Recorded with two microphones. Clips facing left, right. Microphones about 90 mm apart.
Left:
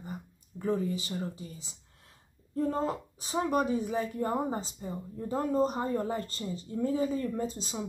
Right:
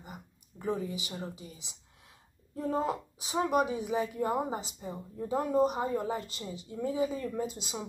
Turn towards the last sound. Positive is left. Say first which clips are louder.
# left 1 dB
turn(degrees=-10)  # may be behind; listen again after turning